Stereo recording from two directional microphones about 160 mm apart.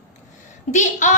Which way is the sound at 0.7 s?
50° left (ahead or behind).